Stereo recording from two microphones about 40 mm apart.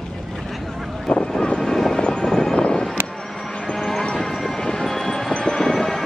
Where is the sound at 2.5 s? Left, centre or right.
Left.